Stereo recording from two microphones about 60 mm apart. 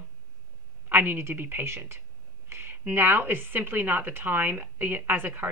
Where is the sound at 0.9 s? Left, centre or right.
Right.